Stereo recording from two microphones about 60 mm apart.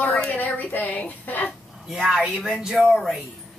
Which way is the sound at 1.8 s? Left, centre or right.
Centre.